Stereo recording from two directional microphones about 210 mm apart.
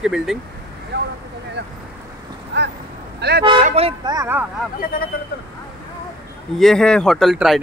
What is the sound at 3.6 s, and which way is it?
Speech, 30° right (ahead or behind).